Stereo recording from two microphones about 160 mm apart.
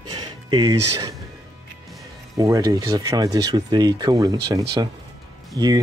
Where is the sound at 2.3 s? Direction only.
20° right (ahead or behind).